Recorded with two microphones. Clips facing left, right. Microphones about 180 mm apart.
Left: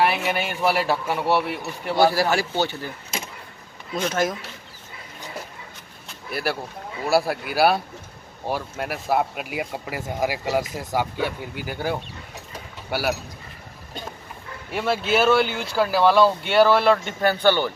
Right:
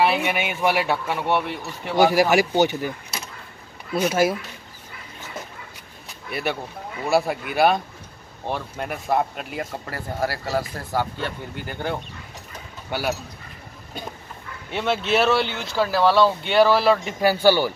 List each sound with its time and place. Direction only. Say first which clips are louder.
0.0 s speech: right 1 dB; centre (ahead or behind)
2.0 s speech: right 3 dB; 15° right (ahead or behind)
3.9 s speech: right 4 dB; 10° right (ahead or behind)
6.3 s speech: even; 5° left (ahead or behind)
14.7 s speech: even; 5° left (ahead or behind)